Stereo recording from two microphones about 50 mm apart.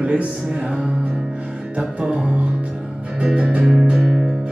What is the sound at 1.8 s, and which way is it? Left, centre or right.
Music, right.